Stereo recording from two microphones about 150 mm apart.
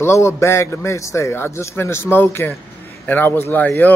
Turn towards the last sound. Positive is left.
turn(degrees=10)  # may be behind; listen again after turning